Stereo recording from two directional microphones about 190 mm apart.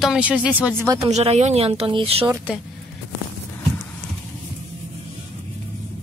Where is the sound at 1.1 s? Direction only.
35° right (ahead or behind).